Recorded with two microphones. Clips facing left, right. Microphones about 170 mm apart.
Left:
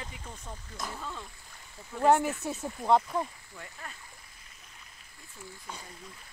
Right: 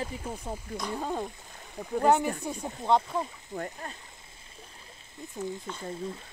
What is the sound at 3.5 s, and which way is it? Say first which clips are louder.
Speech: right 18 dB; 45° right (ahead or behind).